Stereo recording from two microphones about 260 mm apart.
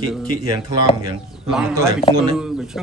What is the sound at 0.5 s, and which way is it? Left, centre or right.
Speech, centre.